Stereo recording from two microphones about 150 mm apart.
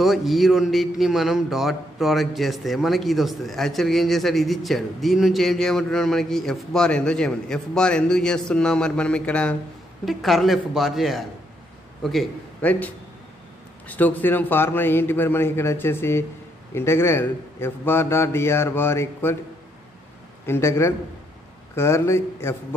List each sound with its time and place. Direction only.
0.0 s a man's voice: centre (ahead or behind); by 19.3 s 15° left (ahead or behind)
20.4 s a man's voice: 15° left (ahead or behind)